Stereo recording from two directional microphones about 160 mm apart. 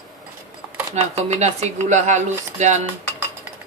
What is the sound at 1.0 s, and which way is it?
A woman's voice, 45° right (ahead or behind).